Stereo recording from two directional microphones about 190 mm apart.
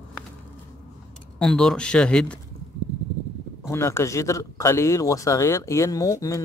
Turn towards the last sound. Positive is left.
turn(degrees=15)  # may be behind; listen again after turning